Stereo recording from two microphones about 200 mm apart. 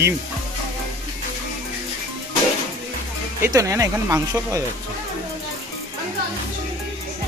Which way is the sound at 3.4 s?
15° right (ahead or behind).